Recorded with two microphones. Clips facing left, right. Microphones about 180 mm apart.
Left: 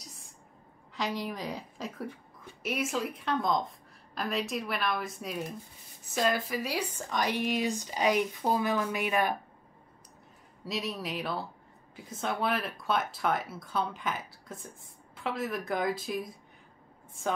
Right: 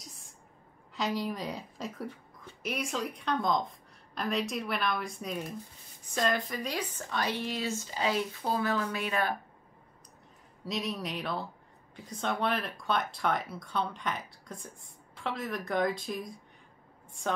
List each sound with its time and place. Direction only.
0.0 s a sound: centre (ahead or behind)
0.9 s speech: centre (ahead or behind)
10.6 s speech: centre (ahead or behind)